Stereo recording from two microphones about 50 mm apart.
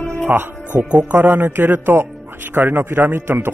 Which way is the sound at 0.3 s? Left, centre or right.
Right.